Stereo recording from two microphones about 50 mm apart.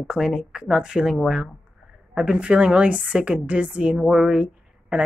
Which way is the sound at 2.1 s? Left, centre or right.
Right.